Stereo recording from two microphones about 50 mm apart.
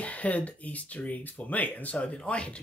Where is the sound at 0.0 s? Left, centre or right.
Left.